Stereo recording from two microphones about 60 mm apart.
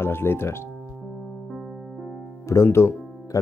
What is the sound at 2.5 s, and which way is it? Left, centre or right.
Speech, left.